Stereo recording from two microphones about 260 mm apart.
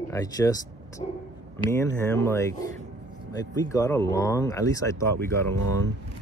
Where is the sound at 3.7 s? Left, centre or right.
Centre.